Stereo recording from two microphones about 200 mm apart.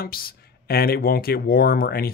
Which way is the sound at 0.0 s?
50° left (ahead or behind).